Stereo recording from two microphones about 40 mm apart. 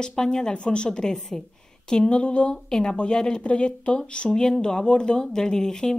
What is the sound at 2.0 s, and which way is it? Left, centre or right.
Speech, left.